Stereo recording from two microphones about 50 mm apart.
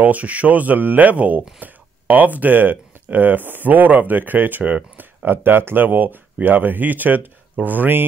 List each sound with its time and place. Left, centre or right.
0.0 s speech: right